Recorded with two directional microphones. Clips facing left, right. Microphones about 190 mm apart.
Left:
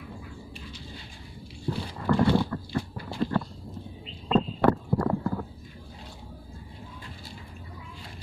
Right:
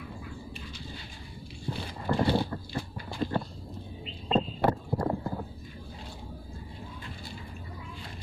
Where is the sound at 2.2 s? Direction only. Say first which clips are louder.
Left 3 dB; 25° right (ahead or behind).